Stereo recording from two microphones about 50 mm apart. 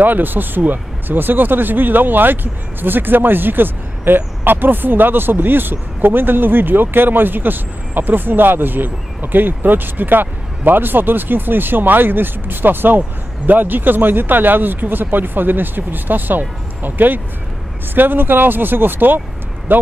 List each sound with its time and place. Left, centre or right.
0.0 s speech: right